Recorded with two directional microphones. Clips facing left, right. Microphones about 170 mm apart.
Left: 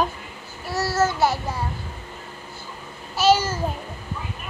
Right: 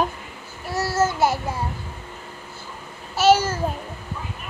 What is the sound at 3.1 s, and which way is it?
Babbling, 20° right (ahead or behind).